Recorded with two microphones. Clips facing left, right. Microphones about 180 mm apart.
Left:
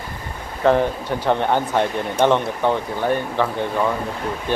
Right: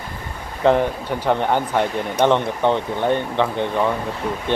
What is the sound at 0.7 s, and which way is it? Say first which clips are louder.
Speech: even; 15° right (ahead or behind).